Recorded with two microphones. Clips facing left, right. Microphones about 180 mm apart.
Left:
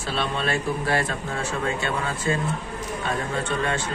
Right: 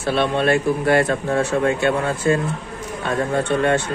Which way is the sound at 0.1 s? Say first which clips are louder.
Right 8 dB; 60° right (ahead or behind).